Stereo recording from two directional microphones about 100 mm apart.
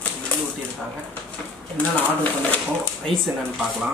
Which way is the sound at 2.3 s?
15° left (ahead or behind).